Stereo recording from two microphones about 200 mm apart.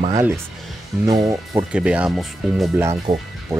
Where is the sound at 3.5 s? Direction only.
15° right (ahead or behind).